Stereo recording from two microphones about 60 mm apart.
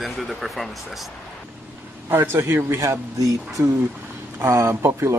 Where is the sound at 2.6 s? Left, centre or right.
Right.